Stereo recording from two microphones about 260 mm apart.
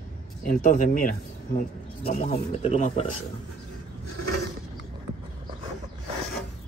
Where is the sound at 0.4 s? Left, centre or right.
Left.